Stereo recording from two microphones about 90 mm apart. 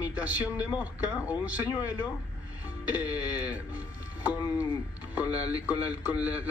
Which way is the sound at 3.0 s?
45° left (ahead or behind).